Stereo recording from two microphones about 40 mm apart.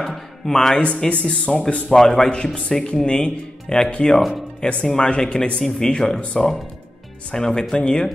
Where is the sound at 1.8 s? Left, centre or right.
Centre.